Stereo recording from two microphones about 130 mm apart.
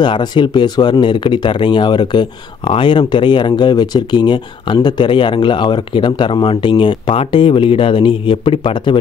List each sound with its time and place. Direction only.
0.0 s speech: 35° left (ahead or behind)